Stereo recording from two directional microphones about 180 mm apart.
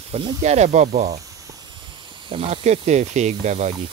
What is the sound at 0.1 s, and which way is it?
Speech, 35° right (ahead or behind).